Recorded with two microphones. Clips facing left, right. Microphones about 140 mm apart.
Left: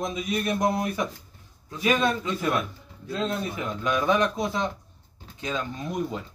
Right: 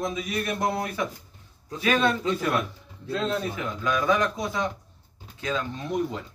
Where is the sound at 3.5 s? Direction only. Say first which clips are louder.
Even; 20° left (ahead or behind).